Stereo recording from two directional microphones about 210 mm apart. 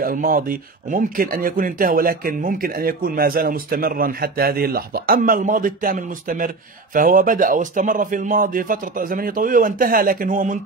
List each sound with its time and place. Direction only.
0.0 s speech: 40° right (ahead or behind)